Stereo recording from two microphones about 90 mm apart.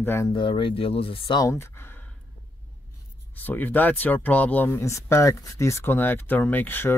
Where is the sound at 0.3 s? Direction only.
70° left (ahead or behind); by 1.4 s 90° left.